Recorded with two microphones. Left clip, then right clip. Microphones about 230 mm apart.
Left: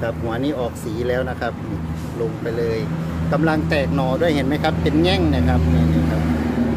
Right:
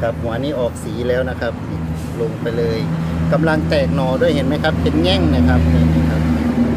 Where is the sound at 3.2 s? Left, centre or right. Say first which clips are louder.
Right 3 dB; centre.